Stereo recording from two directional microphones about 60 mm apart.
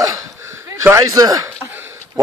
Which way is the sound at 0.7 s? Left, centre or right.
Right.